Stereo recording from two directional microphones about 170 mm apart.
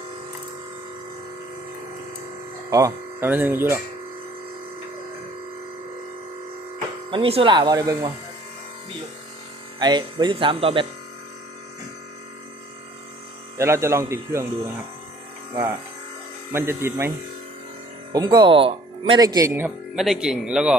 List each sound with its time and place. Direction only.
2.7 s speech: 15° right (ahead or behind)
7.1 s speech: 35° right (ahead or behind)
9.8 s speech: 25° right (ahead or behind)
13.6 s speech: 15° right (ahead or behind)
16.5 s speech: 15° right (ahead or behind)
18.1 s speech: 25° right (ahead or behind)
20.0 s speech: 5° right (ahead or behind)